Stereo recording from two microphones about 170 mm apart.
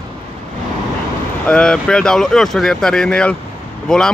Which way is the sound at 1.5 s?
5° left (ahead or behind).